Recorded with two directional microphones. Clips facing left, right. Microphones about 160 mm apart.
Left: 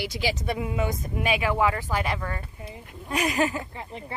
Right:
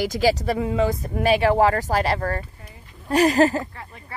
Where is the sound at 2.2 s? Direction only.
50° right (ahead or behind).